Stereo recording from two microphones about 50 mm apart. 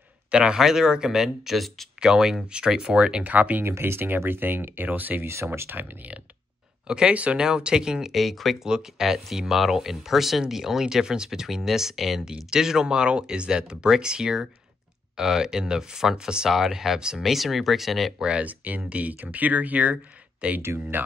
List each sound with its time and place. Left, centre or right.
0.3 s speech: centre
3.3 s speech: right
3.6 s speech: right
5.2 s speech: right
6.9 s speech: right; by 8.5 s centre
8.6 s speech: centre
18.4 s speech: right
20.6 s speech: right